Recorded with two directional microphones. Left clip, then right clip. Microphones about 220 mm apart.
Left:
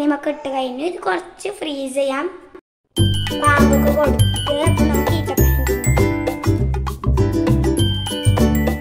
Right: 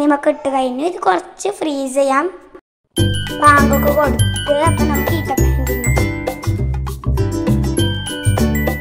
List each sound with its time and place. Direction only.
0.0 s a woman's voice: 15° right (ahead or behind)
3.0 s jingle: centre (ahead or behind)
3.4 s speech: centre (ahead or behind)
7.2 s music: centre (ahead or behind)